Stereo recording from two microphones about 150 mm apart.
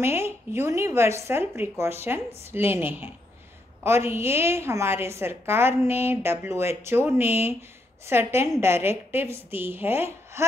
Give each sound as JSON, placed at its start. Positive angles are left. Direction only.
{"t": 0.0, "sound": "a woman's voice", "side_deg": -15}